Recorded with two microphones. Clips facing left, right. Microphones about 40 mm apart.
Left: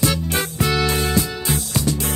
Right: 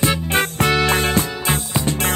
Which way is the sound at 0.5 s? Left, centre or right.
Right.